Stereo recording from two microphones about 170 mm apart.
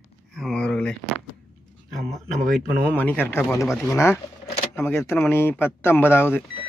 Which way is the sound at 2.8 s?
10° left (ahead or behind).